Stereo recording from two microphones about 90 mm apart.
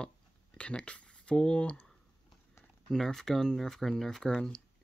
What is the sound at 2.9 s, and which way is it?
Speech, 5° left (ahead or behind).